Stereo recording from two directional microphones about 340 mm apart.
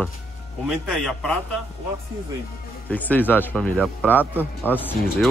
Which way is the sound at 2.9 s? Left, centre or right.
Centre.